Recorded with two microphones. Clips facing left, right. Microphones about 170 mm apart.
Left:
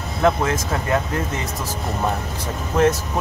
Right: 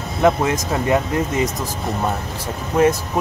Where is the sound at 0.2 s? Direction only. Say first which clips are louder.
Right 2 dB; 20° right (ahead or behind).